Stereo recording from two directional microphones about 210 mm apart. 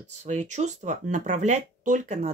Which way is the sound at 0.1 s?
35° right (ahead or behind).